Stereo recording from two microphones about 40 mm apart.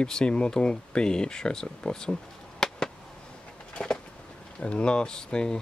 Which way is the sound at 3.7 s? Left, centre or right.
Left.